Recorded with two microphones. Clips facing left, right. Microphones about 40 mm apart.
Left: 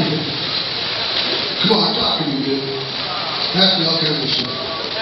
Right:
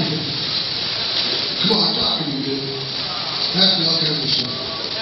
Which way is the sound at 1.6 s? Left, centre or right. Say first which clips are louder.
Left 3 dB; centre.